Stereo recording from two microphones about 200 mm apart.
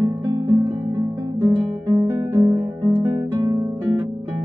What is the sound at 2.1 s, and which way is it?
Music, 15° right (ahead or behind).